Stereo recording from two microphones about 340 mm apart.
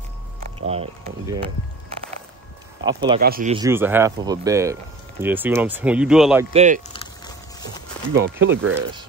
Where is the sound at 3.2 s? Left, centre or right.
Right.